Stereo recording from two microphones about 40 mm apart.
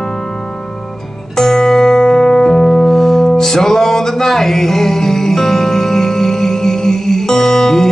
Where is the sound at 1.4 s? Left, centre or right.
Centre.